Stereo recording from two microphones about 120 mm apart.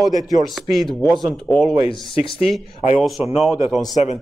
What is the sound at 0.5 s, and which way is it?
Speech, centre (ahead or behind).